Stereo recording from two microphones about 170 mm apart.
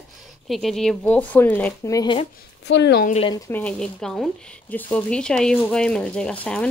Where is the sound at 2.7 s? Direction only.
85° left.